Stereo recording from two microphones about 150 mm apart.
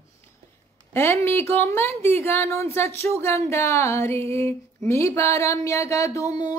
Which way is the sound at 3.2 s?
20° left (ahead or behind).